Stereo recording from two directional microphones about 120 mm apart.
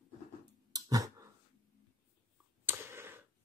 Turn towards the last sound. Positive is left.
turn(degrees=-20)  # may be behind; listen again after turning